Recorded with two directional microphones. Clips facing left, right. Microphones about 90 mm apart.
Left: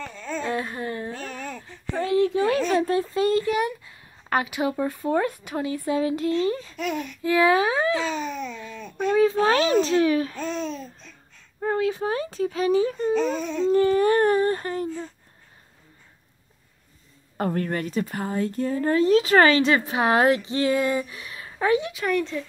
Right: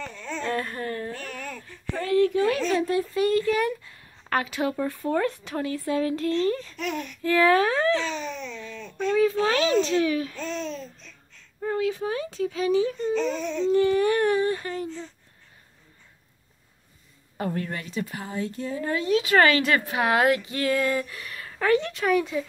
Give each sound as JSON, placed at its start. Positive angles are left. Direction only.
{"t": 0.0, "sound": "a sound", "side_deg": 10}
{"t": 1.1, "sound": "a sound", "side_deg": 25}
{"t": 2.8, "sound": "speech", "side_deg": 35}
{"t": 9.2, "sound": "speech", "side_deg": 30}
{"t": 10.3, "sound": "babbling", "side_deg": 15}
{"t": 11.6, "sound": "speech", "side_deg": 40}
{"t": 13.1, "sound": "baby cry", "side_deg": 10}
{"t": 13.7, "sound": "speech", "side_deg": 40}
{"t": 17.4, "sound": "speech", "side_deg": 50}
{"t": 22.0, "sound": "speech", "side_deg": -5}